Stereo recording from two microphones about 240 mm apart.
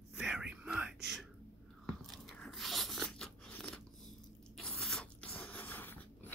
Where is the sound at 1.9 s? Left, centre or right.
Centre.